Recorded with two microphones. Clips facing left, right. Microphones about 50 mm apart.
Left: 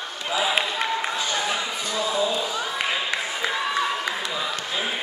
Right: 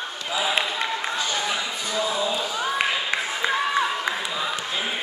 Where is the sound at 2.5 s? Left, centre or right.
Centre.